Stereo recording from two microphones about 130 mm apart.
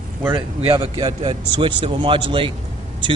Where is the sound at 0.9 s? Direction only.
35° right (ahead or behind).